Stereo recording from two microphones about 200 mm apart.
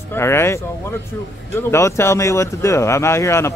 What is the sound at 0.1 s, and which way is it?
Speech, 10° left (ahead or behind).